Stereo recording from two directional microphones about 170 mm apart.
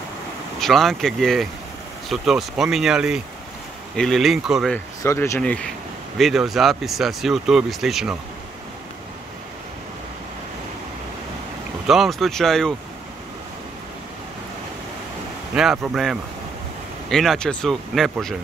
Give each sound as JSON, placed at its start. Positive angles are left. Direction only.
{"t": 0.6, "sound": "speech", "side_deg": 0}
{"t": 4.7, "sound": "speech", "side_deg": 15}
{"t": 11.9, "sound": "speech", "side_deg": 0}
{"t": 15.5, "sound": "speech", "side_deg": -5}